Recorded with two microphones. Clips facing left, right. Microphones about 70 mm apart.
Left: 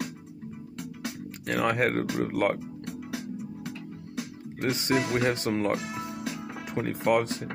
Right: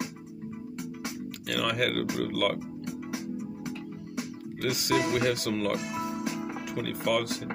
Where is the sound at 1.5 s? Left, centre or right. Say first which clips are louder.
Left 3 dB; left.